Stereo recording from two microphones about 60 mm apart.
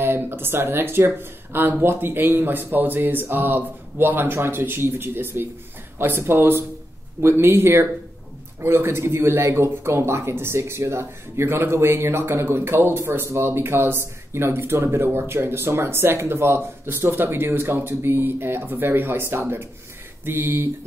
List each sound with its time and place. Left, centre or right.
0.0 s speech: right